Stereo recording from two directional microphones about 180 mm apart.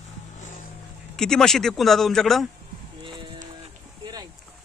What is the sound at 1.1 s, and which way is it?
A man's voice, 5° left (ahead or behind).